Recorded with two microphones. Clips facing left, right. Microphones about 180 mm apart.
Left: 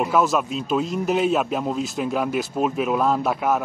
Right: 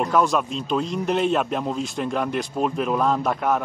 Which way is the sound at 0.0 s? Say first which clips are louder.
Even; 5° left (ahead or behind).